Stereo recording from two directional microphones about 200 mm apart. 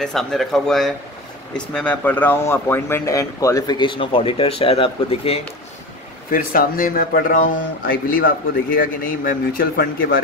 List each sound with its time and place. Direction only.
0.0 s speech: centre (ahead or behind); by 5.4 s 30° left (ahead or behind)
6.3 s speech: 45° left (ahead or behind)